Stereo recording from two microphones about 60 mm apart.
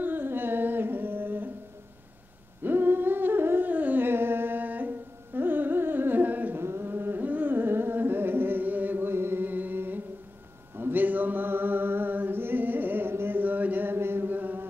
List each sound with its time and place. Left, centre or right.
0.0 s humming: right
2.6 s humming: right
6.6 s carnatic music: right
10.8 s a sound: right